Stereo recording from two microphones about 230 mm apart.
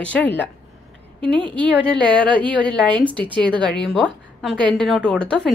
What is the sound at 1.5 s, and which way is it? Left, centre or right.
A woman's voice, centre.